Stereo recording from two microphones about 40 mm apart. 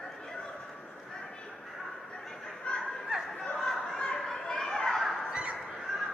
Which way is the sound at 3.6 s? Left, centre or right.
Centre.